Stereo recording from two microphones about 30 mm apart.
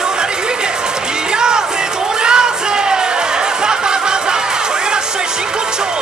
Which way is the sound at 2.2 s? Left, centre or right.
Right.